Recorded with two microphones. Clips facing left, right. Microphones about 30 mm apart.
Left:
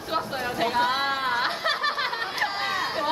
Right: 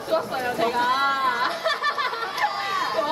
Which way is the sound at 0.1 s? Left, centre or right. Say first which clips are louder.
Right 4 dB; centre.